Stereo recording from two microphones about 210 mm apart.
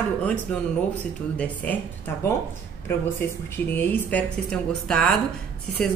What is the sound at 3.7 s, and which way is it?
A woman's voice, 10° left (ahead or behind).